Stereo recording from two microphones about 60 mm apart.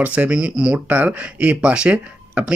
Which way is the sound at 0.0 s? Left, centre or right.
Right.